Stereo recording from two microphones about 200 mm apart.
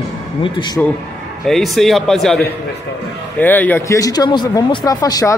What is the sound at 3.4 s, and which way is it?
Speech, 10° left (ahead or behind).